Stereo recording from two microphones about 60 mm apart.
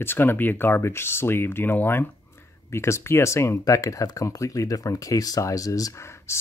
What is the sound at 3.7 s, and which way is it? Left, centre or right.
Speech, left.